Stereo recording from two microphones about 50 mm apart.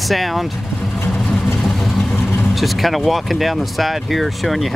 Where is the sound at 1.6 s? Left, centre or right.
Centre.